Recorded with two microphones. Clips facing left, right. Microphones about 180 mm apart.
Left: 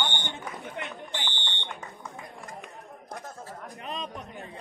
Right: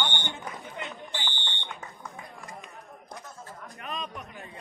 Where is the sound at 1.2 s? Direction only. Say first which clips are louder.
Left 1 dB; 15° left (ahead or behind).